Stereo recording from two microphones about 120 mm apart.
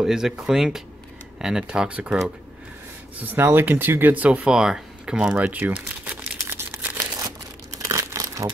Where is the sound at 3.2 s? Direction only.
15° right (ahead or behind).